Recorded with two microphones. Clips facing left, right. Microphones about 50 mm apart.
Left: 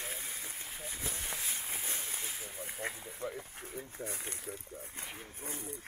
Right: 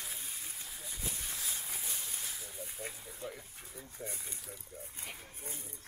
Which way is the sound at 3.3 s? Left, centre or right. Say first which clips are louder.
Left 5 dB; left.